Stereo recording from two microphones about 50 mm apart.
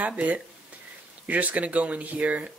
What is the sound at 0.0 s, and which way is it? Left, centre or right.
A man's voice, right.